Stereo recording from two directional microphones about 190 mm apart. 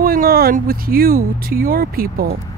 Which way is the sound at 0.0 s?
50° right (ahead or behind).